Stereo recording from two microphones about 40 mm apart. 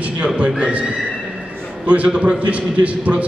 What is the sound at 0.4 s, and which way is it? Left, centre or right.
Speech, right.